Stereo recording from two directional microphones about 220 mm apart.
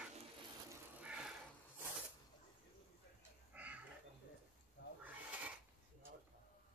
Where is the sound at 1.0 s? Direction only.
5° right (ahead or behind).